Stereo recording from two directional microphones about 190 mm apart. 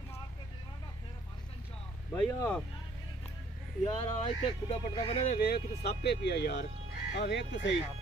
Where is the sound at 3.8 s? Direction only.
30° left (ahead or behind).